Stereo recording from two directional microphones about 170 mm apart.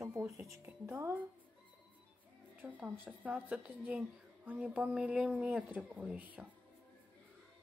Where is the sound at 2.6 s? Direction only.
10° right (ahead or behind).